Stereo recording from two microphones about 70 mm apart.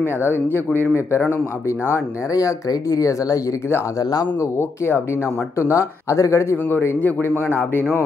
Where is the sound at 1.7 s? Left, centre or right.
Left.